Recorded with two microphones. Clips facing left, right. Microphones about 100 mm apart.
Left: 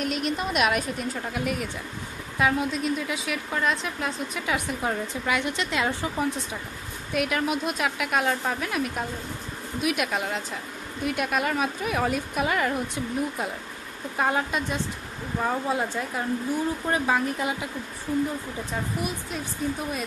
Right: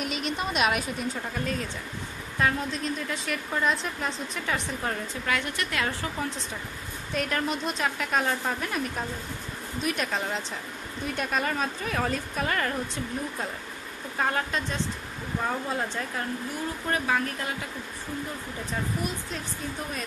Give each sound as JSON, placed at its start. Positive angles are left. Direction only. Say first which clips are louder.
{"t": 0.0, "sound": "a woman's voice", "louder": "left 3 dB", "side_deg": 0}
{"t": 1.4, "sound": "a woman's voice", "louder": "left 2 dB", "side_deg": 10}
{"t": 7.2, "sound": "a woman's voice", "louder": "left 3 dB", "side_deg": 5}
{"t": 16.9, "sound": "a woman's voice", "louder": "left 1 dB", "side_deg": 20}